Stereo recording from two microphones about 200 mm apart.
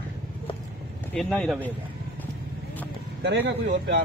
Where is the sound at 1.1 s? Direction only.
5° left (ahead or behind).